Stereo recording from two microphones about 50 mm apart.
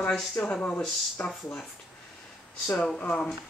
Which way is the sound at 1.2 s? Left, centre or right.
Left.